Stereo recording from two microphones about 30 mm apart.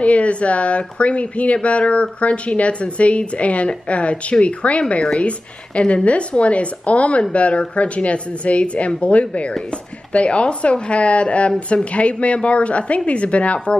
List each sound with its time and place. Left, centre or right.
0.0 s speech: left
6.0 s speech: left